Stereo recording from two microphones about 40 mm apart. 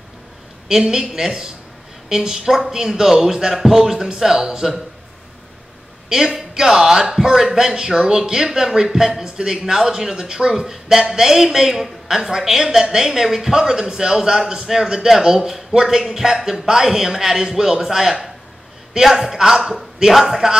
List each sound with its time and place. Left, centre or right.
0.7 s a man's voice: centre
6.0 s a man's voice: centre